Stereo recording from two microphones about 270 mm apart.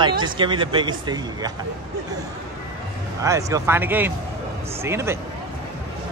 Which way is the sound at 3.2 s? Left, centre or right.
Centre.